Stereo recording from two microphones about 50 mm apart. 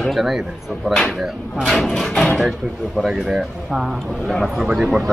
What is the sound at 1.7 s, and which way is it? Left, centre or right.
Speech, centre.